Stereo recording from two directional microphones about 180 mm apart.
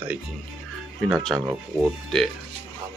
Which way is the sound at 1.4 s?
5° right (ahead or behind).